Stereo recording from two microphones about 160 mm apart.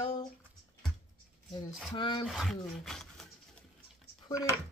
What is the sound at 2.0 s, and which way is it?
Speech, 30° left (ahead or behind).